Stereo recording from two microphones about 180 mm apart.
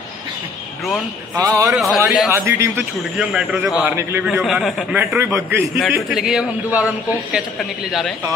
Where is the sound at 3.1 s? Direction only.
Centre (ahead or behind).